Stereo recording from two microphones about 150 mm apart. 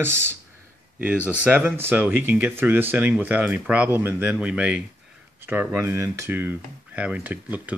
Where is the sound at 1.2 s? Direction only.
15° left (ahead or behind).